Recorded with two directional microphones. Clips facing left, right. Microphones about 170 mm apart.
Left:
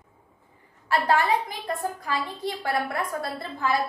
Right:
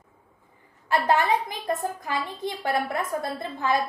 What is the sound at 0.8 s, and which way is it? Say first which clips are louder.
A woman's voice: right 1 dB; 20° right (ahead or behind).